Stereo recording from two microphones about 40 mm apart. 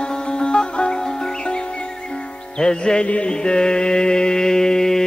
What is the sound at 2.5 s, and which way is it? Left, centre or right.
Music, centre.